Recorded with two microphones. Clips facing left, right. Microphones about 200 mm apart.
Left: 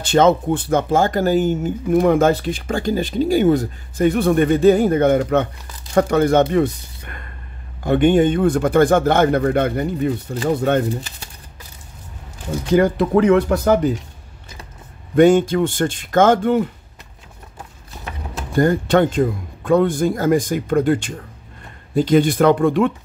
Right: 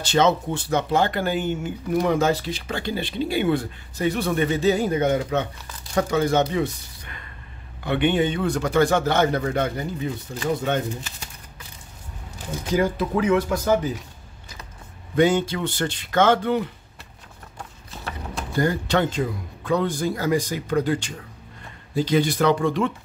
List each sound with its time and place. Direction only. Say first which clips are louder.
0.0 s speech: left 5 dB; 50° left (ahead or behind)
7.8 s speech: left 7 dB; 45° left (ahead or behind)
12.7 s speech: left 7 dB; 65° left (ahead or behind)
15.1 s speech: left 7 dB; 50° left (ahead or behind)
18.5 s speech: left 7 dB; 50° left (ahead or behind)